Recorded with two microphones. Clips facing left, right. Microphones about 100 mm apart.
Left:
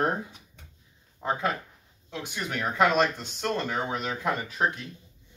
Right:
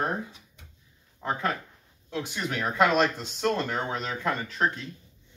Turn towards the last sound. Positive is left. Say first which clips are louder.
# even
turn(degrees=15)  # may be behind; listen again after turning